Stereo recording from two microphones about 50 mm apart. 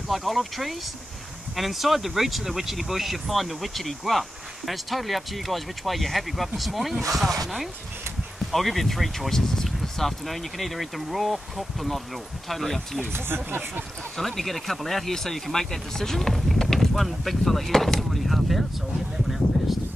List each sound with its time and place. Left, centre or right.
0.1 s speech: centre
13.1 s speech: right
14.1 s speech: centre
19.2 s a sound: centre